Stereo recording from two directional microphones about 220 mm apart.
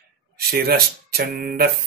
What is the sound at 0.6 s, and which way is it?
Mantra, 45° right (ahead or behind).